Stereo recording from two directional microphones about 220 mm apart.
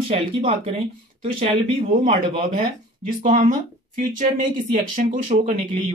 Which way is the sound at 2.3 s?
25° right (ahead or behind).